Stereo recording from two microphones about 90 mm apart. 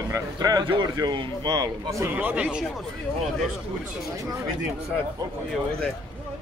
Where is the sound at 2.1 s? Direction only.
15° right (ahead or behind).